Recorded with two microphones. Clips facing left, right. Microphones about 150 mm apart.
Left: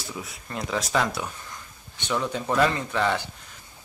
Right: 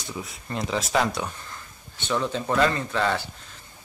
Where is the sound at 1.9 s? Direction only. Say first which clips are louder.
Right 1 dB; 10° left (ahead or behind).